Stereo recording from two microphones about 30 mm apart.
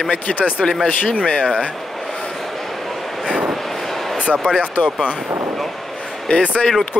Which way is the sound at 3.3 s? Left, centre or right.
Right.